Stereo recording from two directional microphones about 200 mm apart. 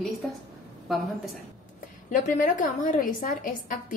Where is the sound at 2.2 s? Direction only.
40° left (ahead or behind).